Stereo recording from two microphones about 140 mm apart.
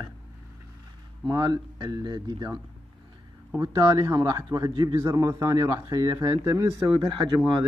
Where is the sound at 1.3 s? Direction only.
30° right (ahead or behind).